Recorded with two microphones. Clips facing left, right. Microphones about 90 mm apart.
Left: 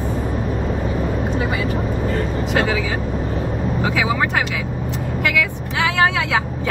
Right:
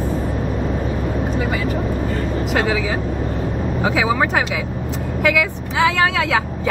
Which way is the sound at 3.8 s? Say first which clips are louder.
Right 3 dB; 15° right (ahead or behind).